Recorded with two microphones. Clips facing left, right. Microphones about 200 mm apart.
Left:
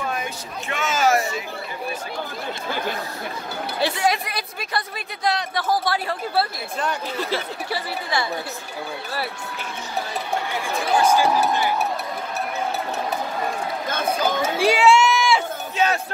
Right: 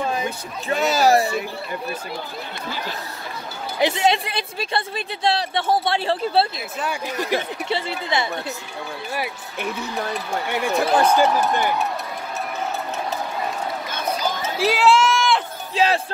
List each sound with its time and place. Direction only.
0.0 s speech: 30° right (ahead or behind)
3.8 s a woman's voice: 25° right (ahead or behind)
6.8 s speech: 10° right (ahead or behind)
10.5 s speech: 65° right (ahead or behind)
14.1 s chatter: 55° left (ahead or behind)
14.6 s run: centre (ahead or behind)
15.7 s speech: 30° right (ahead or behind)